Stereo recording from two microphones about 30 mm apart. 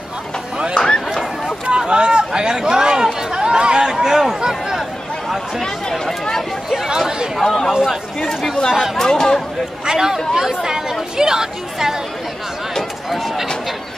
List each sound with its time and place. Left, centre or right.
0.7 s a sound: left
1.9 s chatter: right
3.8 s a sound: centre
5.6 s speech: centre
8.5 s speech: left
9.8 s speech: centre
13.1 s speech: centre